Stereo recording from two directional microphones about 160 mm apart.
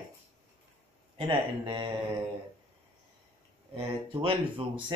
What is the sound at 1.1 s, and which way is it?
Speech, 30° right (ahead or behind).